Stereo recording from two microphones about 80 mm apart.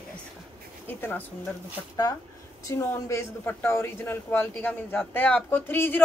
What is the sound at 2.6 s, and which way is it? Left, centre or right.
Speech, left.